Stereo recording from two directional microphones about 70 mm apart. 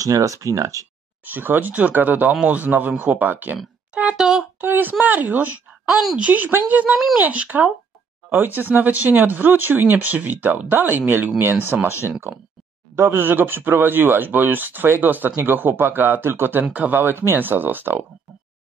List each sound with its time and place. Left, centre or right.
0.0 s speech: right
1.2 s speech: right
4.6 s a woman's voice: right
5.9 s a woman's voice: centre
6.1 s speech: right
12.9 s speech: right